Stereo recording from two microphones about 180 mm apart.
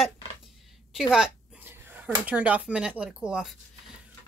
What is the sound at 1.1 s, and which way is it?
Speech, 5° right (ahead or behind).